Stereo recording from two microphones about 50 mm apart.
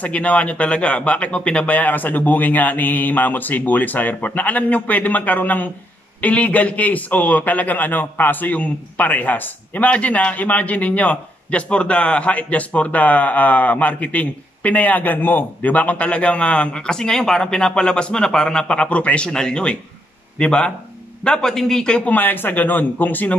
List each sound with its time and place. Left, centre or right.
0.0 s a man's voice: left
22.1 s speech: left